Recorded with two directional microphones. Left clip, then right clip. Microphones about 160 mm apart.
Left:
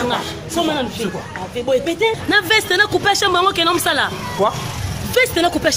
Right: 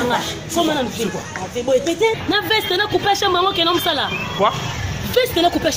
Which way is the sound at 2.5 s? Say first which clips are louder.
Left 2 dB; 15° left (ahead or behind).